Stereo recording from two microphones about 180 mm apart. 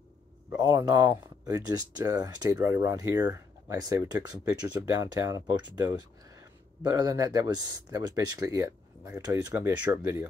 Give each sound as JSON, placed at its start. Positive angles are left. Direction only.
{"t": 0.5, "sound": "speech", "side_deg": -20}